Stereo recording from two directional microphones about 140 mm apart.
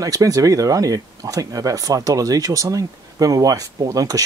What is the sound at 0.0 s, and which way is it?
Speech, 25° right (ahead or behind).